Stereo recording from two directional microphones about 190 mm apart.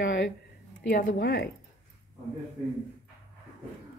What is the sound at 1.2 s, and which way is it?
Speech, 60° left (ahead or behind).